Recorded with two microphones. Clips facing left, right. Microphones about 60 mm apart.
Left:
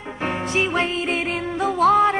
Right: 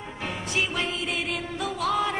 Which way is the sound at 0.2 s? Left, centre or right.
Left.